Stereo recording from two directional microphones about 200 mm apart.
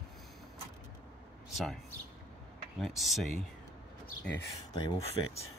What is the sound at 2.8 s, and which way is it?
Speech, centre (ahead or behind).